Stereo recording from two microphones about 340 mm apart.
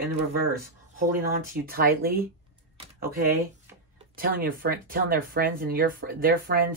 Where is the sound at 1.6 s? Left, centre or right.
Right.